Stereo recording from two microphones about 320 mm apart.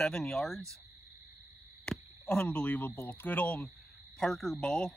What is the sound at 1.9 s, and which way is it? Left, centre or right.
Speech, centre.